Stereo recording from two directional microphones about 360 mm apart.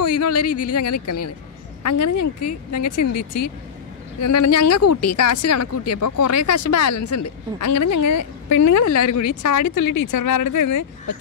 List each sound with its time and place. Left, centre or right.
0.0 s a sound: left
0.7 s speech: left
4.2 s speech: left